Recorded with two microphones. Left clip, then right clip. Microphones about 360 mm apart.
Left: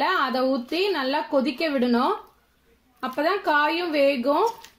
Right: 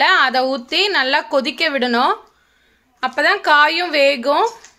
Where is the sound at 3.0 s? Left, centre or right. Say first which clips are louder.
Right 8 dB; right.